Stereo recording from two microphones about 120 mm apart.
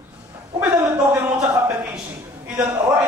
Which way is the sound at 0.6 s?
15° right (ahead or behind).